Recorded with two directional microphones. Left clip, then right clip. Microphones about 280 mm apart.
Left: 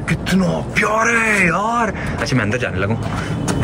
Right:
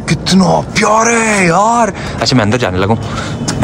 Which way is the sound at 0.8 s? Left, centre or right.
Centre.